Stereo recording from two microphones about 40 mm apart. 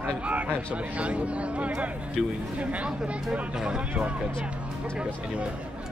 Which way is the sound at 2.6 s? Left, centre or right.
Right.